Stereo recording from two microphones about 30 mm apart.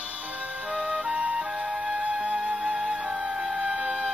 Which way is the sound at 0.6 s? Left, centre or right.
Right.